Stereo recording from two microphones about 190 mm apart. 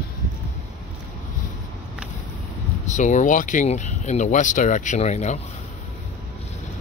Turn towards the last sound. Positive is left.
turn(degrees=35)  # may be behind; listen again after turning